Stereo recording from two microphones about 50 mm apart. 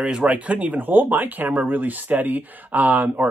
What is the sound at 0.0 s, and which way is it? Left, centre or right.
Speech, right.